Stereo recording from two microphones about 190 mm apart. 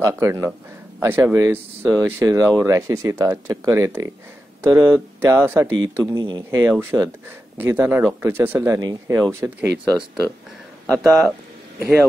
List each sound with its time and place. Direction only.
0.0 s speech: 15° right (ahead or behind)
9.8 s speech: 15° left (ahead or behind)
10.9 s speech: centre (ahead or behind)
11.8 s speech: 10° right (ahead or behind)